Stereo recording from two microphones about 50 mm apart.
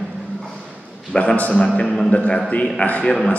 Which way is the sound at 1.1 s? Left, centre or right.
Centre.